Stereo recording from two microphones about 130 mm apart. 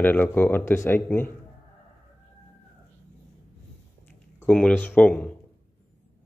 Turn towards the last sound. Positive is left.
turn(degrees=10)  # may be behind; listen again after turning